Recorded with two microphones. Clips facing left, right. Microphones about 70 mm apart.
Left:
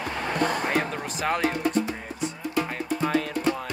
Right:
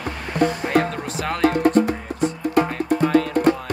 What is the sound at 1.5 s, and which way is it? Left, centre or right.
Music, right.